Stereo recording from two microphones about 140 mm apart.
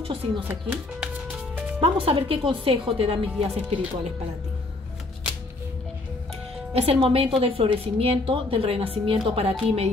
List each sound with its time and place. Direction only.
0.4 s speech: 15° right (ahead or behind)
1.8 s speech: 45° right (ahead or behind)
6.7 s speech: 45° right (ahead or behind)